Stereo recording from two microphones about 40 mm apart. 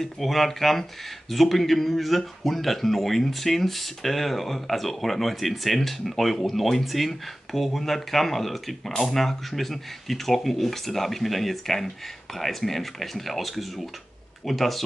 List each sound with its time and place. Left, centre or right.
0.0 s speech: centre